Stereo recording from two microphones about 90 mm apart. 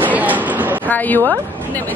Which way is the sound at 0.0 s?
20° right (ahead or behind).